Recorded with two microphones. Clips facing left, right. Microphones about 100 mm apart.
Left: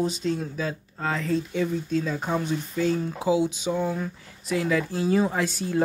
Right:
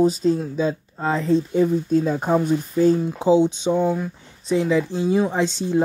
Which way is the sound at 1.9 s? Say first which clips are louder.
Right 7 dB; 45° right (ahead or behind).